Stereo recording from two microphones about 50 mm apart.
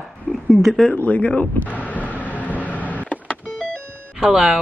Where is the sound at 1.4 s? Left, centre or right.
Left.